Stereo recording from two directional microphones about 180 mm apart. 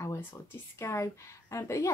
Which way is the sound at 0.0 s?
15° left (ahead or behind).